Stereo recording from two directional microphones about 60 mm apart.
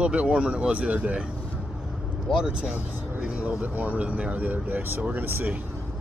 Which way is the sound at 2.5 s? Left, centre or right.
Centre.